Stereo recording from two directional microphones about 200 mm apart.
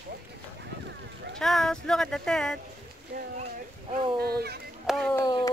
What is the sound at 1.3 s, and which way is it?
Speech, centre (ahead or behind).